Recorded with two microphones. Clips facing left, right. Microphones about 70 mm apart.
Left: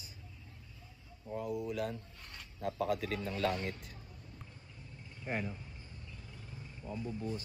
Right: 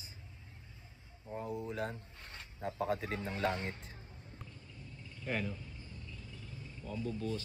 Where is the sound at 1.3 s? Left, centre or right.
Right.